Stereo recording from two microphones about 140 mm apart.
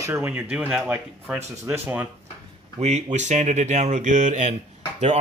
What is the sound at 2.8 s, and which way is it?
Speech, 55° right (ahead or behind).